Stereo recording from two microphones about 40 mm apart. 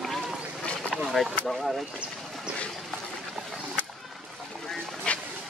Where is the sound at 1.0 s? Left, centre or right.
Centre.